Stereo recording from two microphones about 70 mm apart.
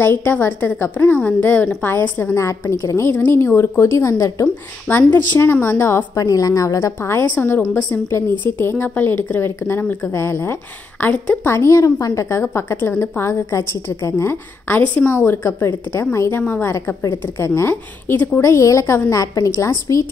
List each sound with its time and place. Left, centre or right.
0.0 s a woman's voice: left
2.3 s a woman's voice: left
3.1 s a woman's voice: left
4.8 s a woman's voice: left
7.0 s a woman's voice: left
11.1 s a woman's voice: left
11.5 s a woman's voice: left
16.7 s a woman's voice: left
18.4 s a woman's voice: left